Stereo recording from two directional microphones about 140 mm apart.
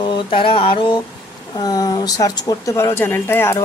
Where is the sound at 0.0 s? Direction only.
35° left (ahead or behind).